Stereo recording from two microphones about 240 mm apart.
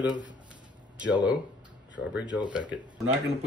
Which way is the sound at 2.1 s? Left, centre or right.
Centre.